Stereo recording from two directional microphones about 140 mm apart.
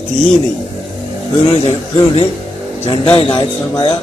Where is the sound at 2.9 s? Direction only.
40° left (ahead or behind).